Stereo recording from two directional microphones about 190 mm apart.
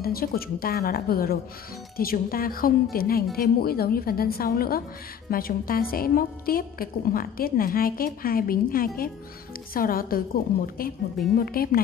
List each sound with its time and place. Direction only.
0.0 s a woman's voice: 50° left (ahead or behind)